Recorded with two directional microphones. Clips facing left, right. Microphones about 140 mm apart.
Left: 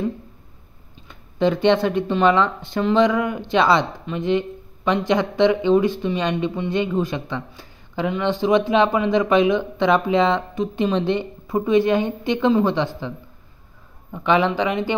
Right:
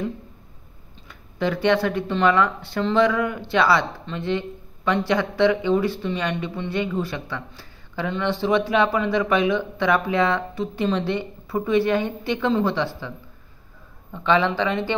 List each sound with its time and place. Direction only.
1.0 s speech: 20° left (ahead or behind)
14.1 s speech: 15° left (ahead or behind)